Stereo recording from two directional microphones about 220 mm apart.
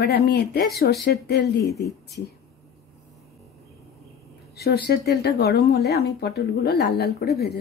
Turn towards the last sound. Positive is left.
turn(degrees=45)  # may be behind; listen again after turning